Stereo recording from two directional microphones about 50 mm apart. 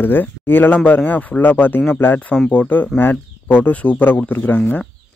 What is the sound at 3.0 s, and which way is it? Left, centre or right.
Speech, left.